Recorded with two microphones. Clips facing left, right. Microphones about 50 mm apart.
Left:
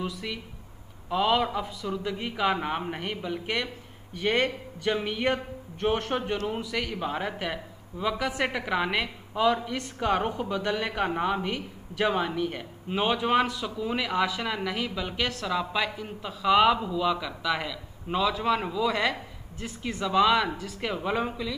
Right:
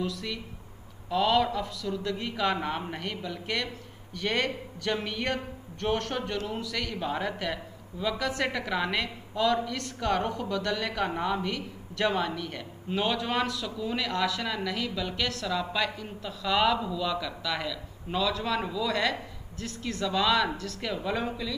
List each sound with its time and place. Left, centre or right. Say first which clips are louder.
0.0 s a man's voice: even; centre